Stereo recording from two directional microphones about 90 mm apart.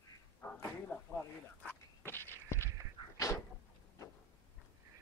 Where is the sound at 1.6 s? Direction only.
20° left (ahead or behind).